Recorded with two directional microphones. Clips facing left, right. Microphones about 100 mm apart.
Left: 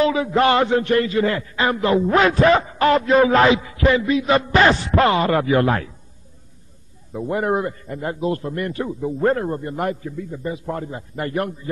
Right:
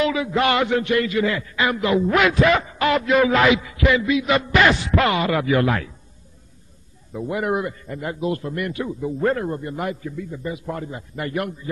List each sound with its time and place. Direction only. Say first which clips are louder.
0.0 s a man's voice: left 3 dB; 35° left (ahead or behind)
7.1 s a man's voice: left 2 dB; 35° left (ahead or behind)